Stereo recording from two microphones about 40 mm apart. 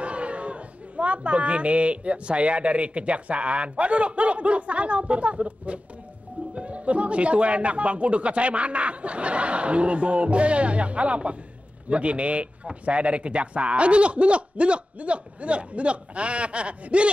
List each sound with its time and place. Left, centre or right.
0.0 s a woman's voice: right